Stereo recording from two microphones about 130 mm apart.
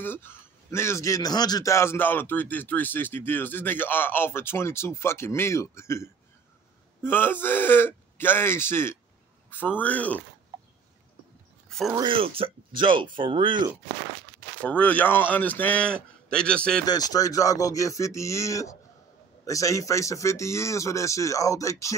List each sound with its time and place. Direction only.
0.0 s a man's voice: 15° left (ahead or behind)
12.0 s speech: 45° right (ahead or behind)
14.6 s a man's voice: 10° left (ahead or behind)
16.8 s a man's voice: 30° left (ahead or behind)